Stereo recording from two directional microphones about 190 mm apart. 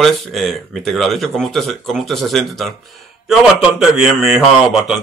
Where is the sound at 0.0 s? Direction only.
Centre (ahead or behind).